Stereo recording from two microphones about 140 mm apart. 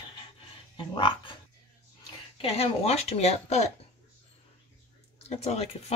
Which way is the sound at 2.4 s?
50° left (ahead or behind).